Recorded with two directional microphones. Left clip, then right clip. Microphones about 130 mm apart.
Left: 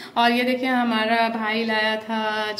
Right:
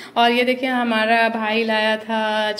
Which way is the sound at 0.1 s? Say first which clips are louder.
Right 3 dB; 20° right (ahead or behind).